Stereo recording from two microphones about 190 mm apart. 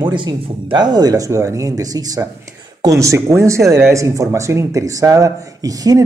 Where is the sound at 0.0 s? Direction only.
25° right (ahead or behind).